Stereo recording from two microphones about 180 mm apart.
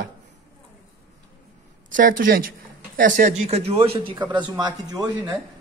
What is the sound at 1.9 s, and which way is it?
A man's voice, 50° right (ahead or behind).